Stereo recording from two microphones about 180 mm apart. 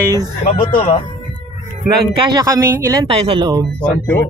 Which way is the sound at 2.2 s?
25° right (ahead or behind).